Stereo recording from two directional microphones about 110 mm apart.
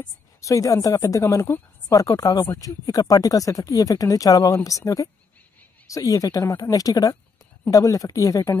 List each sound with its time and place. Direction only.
0.4 s a woman's voice: 30° left (ahead or behind)